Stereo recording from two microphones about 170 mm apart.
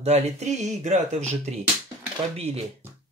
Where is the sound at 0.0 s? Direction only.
40° right (ahead or behind).